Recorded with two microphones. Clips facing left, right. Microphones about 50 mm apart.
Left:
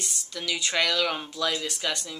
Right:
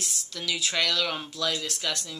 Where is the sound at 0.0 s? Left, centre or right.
Centre.